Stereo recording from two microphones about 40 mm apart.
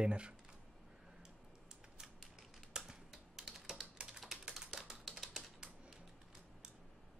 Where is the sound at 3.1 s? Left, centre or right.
Centre.